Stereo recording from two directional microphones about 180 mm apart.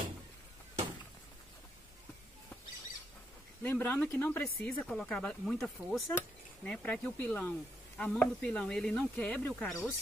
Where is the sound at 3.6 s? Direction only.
10° left (ahead or behind).